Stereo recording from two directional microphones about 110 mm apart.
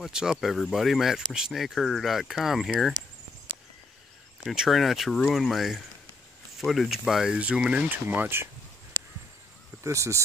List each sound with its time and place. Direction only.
0.0 s speech: 5° right (ahead or behind)
4.5 s speech: centre (ahead or behind); by 8.5 s 20° right (ahead or behind)
9.8 s speech: 25° right (ahead or behind)